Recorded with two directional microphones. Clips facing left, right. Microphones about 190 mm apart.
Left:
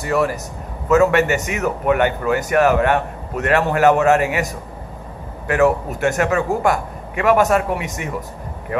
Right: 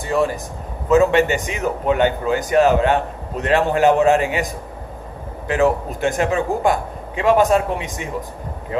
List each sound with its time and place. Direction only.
0.8 s a man's voice: 25° right (ahead or behind)
5.5 s a man's voice: 25° right (ahead or behind)